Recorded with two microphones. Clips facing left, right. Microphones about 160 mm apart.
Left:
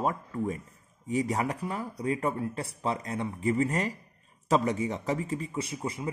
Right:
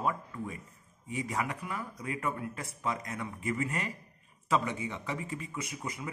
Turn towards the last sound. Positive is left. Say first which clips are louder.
# left 6 dB
turn(degrees=30)  # may be behind; listen again after turning